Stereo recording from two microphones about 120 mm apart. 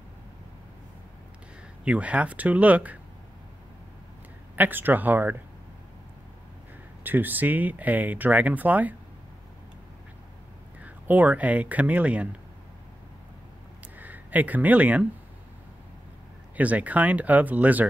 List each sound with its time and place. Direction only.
1.9 s speech: 10° right (ahead or behind)
4.6 s speech: 15° right (ahead or behind)
7.0 s speech: 15° right (ahead or behind)
10.8 s speech: 15° right (ahead or behind)
13.9 s speech: 15° right (ahead or behind)
16.5 s speech: 15° right (ahead or behind)